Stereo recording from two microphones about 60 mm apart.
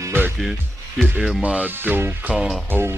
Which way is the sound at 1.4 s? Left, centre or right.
Right.